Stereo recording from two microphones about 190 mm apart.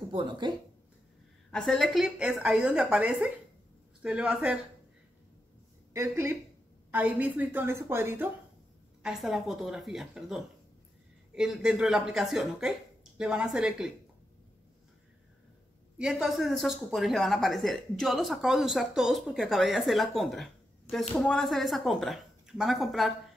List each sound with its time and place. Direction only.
0.1 s speech: 25° right (ahead or behind)
1.5 s speech: centre (ahead or behind)
5.9 s a woman's voice: 15° right (ahead or behind)
9.0 s speech: centre (ahead or behind)
16.0 s speech: centre (ahead or behind)